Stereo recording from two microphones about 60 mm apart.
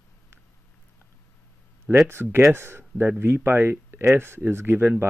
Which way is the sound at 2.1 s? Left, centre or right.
Right.